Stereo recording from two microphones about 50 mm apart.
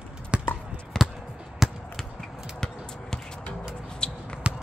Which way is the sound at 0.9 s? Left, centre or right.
Centre.